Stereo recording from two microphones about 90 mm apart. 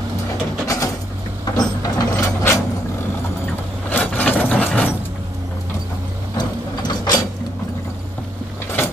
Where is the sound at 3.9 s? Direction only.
15° left (ahead or behind).